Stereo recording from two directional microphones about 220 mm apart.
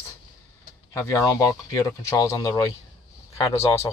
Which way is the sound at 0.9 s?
15° left (ahead or behind).